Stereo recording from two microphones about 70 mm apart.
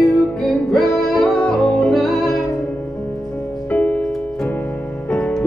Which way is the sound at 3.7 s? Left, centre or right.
Left.